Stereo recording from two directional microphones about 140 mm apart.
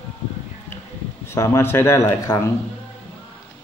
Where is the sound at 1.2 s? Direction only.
20° left (ahead or behind).